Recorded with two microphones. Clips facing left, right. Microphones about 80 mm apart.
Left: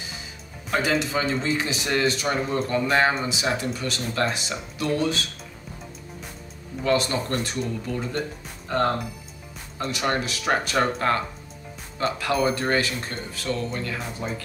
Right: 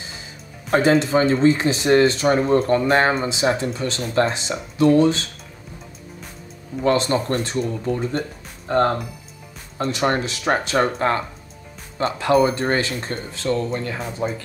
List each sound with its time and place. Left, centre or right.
0.7 s speech: right
6.8 s speech: right